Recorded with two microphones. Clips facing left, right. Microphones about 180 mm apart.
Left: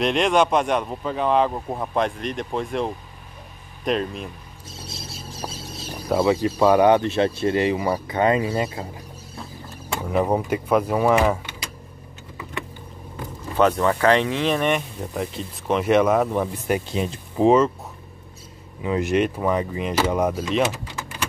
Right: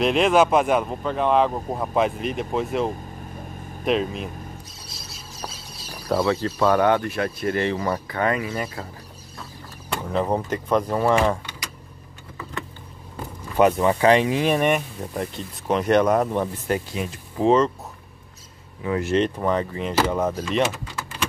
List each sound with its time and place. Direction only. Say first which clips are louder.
0.0 s speech: right 1 dB; centre (ahead or behind)
6.0 s speech: left 2 dB; 10° left (ahead or behind)
10.0 s speech: left 2 dB; 10° left (ahead or behind)
13.6 s speech: right 1 dB; 15° right (ahead or behind)
15.1 s speech: left 1 dB; centre (ahead or behind)
16.9 s speech: left 4 dB; 30° left (ahead or behind)
18.8 s speech: left 1 dB; 20° left (ahead or behind)
20.3 s speech: left 1 dB; 5° left (ahead or behind)